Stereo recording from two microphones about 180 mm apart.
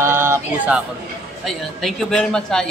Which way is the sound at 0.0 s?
15° right (ahead or behind).